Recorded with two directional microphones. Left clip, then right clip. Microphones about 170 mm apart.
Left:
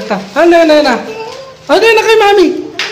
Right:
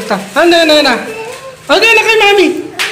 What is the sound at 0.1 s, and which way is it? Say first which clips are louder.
Speech: left 1 dB; 10° left (ahead or behind).